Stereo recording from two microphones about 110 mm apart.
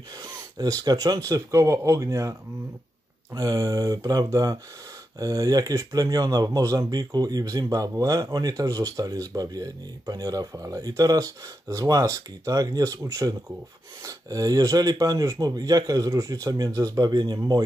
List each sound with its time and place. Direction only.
0.1 s speech: 35° right (ahead or behind)
3.3 s speech: 35° right (ahead or behind)